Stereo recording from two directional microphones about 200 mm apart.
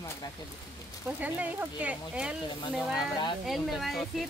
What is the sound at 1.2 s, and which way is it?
Speech, 10° right (ahead or behind).